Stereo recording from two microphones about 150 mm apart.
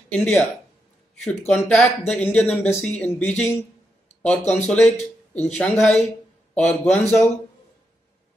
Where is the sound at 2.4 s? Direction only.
45° left (ahead or behind).